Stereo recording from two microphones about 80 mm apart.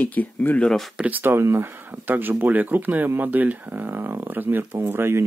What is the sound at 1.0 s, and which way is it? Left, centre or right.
Speech, right.